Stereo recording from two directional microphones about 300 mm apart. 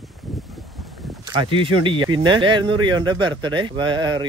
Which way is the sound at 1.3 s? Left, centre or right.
Centre.